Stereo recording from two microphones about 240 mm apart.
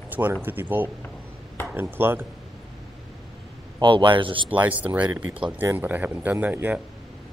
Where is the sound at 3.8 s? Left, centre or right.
Right.